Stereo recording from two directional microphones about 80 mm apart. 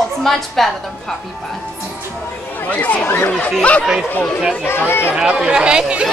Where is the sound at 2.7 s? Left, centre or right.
Centre.